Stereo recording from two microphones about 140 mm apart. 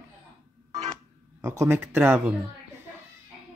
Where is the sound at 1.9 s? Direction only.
15° right (ahead or behind).